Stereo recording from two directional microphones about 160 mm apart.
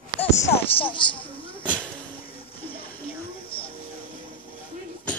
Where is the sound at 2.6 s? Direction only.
35° left (ahead or behind).